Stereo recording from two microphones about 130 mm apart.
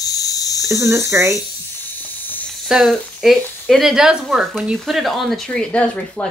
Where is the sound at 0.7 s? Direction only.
25° right (ahead or behind).